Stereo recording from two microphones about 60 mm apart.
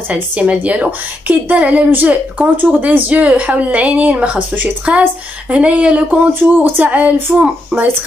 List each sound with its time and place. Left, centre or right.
0.1 s a woman's voice: right